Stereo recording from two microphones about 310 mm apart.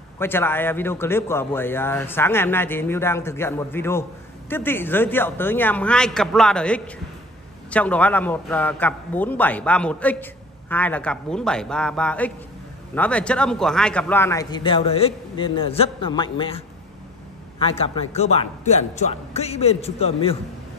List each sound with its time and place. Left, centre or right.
0.2 s a man's voice: centre